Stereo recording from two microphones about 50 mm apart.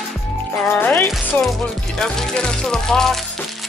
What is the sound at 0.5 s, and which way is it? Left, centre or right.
Music, left.